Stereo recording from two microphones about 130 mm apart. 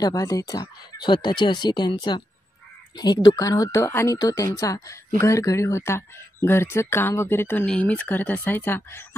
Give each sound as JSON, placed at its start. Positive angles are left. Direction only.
{"t": 0.0, "sound": "speech", "side_deg": 25}